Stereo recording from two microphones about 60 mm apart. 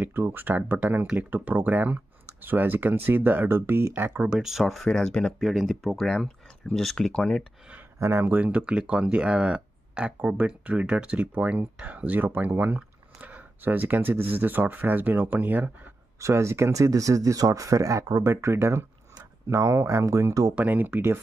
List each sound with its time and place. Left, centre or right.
0.0 s speech: right
4.3 s speech: centre
4.9 s speech: centre
5.4 s speech: centre
8.2 s speech: right
8.5 s speech: centre
16.2 s speech: right
18.2 s speech: right
20.5 s speech: right